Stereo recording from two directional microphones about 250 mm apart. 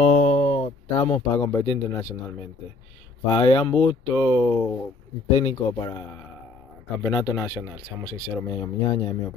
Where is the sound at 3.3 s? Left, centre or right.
Centre.